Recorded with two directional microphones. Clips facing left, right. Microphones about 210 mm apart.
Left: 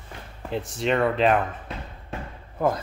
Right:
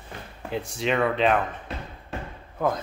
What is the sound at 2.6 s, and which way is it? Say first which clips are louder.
Speech: left 2 dB; 5° left (ahead or behind).